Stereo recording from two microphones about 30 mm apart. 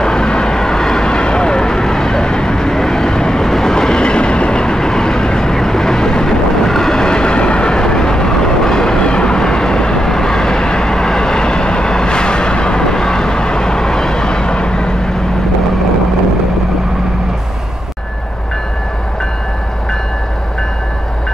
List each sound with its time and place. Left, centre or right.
0.0 s vehicle: left
3.4 s vehicle: centre
3.7 s train: left
4.7 s vehicle: centre